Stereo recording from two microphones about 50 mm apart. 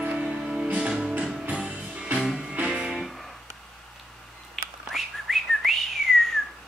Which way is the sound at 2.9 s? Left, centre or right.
Centre.